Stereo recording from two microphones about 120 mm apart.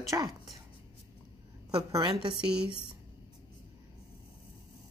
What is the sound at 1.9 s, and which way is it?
Speech, 35° right (ahead or behind).